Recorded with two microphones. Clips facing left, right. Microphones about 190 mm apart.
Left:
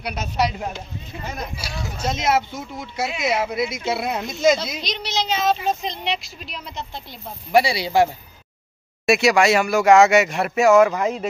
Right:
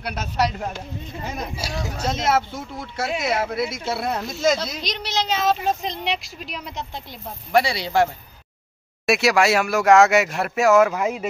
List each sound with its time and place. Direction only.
0.0 s speech: 10° left (ahead or behind)
1.6 s speech: 40° right (ahead or behind)
2.0 s speech: centre (ahead or behind)
3.3 s speech: 15° left (ahead or behind)
3.6 s a woman's voice: centre (ahead or behind); by 6.9 s 15° right (ahead or behind)
7.5 s speech: 5° left (ahead or behind)